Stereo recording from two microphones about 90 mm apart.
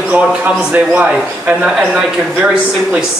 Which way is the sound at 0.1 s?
15° right (ahead or behind).